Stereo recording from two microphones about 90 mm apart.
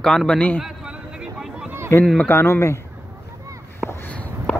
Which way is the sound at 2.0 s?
10° left (ahead or behind).